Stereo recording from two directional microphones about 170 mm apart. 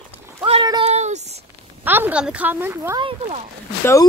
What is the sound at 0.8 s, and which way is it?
Speech, 40° right (ahead or behind).